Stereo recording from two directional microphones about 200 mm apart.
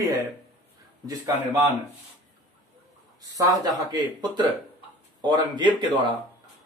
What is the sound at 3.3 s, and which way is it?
Speech, 15° right (ahead or behind).